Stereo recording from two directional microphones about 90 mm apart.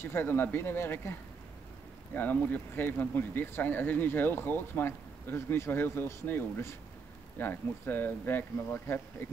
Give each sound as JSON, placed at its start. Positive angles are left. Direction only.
{"t": 0.0, "sound": "speech", "side_deg": 25}
{"t": 2.1, "sound": "speech", "side_deg": 20}